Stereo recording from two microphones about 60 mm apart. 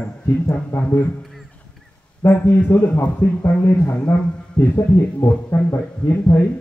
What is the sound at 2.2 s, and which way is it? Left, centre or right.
A man's voice, left.